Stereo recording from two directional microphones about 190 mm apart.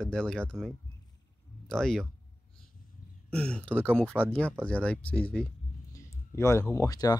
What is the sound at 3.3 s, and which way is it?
Speech, 5° left (ahead or behind).